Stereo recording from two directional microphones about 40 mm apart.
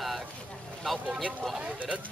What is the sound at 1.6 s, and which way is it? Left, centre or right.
Speech, right.